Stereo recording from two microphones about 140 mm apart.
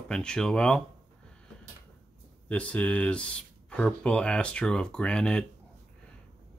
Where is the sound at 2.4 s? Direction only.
10° left (ahead or behind).